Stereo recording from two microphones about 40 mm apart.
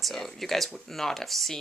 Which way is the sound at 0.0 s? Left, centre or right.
Centre.